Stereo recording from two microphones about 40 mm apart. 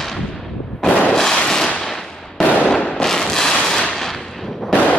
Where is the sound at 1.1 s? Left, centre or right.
Centre.